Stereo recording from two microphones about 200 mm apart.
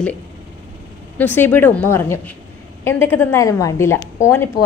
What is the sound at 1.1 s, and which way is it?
A woman's voice, 10° left (ahead or behind).